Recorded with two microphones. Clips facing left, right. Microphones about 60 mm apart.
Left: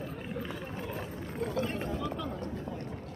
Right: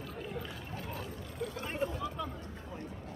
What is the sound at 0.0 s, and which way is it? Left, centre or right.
Vehicle, left.